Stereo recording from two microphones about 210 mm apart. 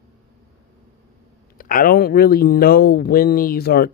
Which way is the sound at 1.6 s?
45° left (ahead or behind).